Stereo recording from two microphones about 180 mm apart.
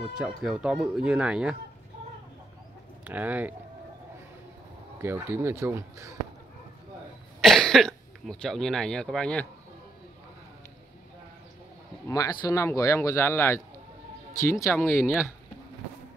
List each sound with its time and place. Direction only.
0.2 s speech: 5° right (ahead or behind)
3.0 s speech: 10° right (ahead or behind)
5.0 s speech: 15° right (ahead or behind)
7.4 s speech: centre (ahead or behind)
12.1 s speech: 20° left (ahead or behind)